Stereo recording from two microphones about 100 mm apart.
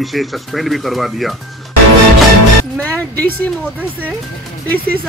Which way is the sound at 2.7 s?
15° left (ahead or behind).